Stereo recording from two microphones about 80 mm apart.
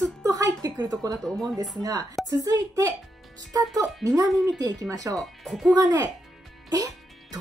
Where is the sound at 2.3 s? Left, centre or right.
Right.